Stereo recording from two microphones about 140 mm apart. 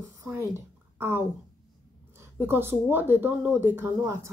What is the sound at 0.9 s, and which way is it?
A woman's voice, 15° right (ahead or behind).